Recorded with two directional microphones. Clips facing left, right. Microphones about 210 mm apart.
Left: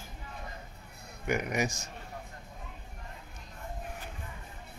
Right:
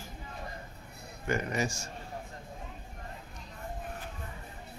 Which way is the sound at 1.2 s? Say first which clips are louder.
Left 1 dB; 15° left (ahead or behind).